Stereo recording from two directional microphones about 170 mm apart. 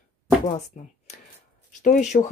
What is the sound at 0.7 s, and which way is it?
Speech, 50° left (ahead or behind).